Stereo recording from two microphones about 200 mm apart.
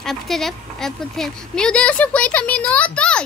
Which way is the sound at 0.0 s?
Centre (ahead or behind).